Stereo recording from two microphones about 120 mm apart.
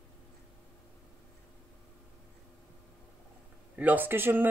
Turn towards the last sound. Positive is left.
turn(degrees=-15)  # may be behind; listen again after turning